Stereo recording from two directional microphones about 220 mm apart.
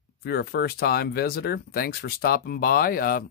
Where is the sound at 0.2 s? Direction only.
45° left (ahead or behind).